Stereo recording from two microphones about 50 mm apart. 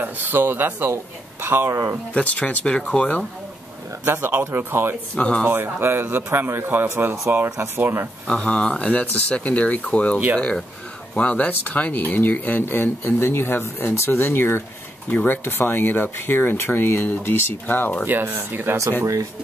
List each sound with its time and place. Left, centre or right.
0.0 s a man's voice: right
1.7 s speech: right
2.1 s speech: left
4.0 s a man's voice: right
5.1 s speech: left
5.5 s a man's voice: right
8.3 s speech: left
11.1 s speech: left
12.7 s speech: left
18.0 s a man's voice: right